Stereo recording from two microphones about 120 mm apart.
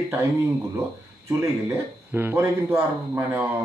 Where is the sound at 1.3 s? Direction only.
20° right (ahead or behind).